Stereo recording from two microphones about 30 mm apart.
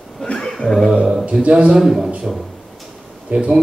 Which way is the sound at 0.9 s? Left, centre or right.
Right.